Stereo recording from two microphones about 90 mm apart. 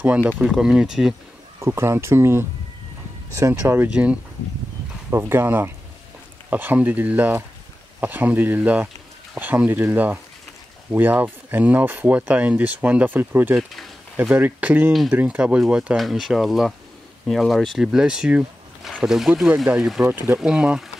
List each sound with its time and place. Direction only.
0.0 s speech: 20° right (ahead or behind)
0.4 s speech: 5° right (ahead or behind)
1.6 s speech: 25° right (ahead or behind)
3.9 s speech: 15° right (ahead or behind)
5.1 s speech: 25° right (ahead or behind)
13.6 s speech: centre (ahead or behind)
14.3 s speech: 15° right (ahead or behind)
16.0 s speech: centre (ahead or behind)
20.0 s speech: 20° right (ahead or behind)
20.3 s speech: 10° right (ahead or behind)